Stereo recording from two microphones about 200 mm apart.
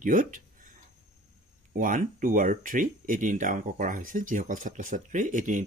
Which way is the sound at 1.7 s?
45° right (ahead or behind).